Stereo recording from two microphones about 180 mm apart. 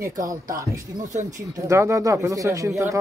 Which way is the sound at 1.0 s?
45° right (ahead or behind).